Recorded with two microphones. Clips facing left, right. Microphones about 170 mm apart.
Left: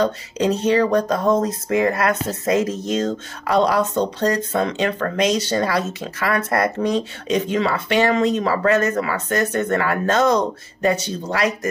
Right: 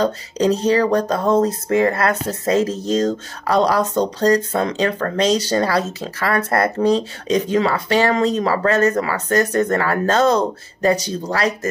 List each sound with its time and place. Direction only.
0.0 s speech: 35° right (ahead or behind)